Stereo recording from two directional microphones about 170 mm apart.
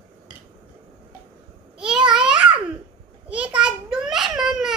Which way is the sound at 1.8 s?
5° right (ahead or behind).